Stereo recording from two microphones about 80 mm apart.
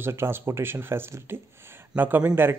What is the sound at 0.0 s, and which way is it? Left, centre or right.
Speech, right.